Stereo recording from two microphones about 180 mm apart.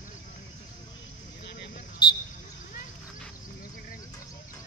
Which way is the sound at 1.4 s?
70° left (ahead or behind).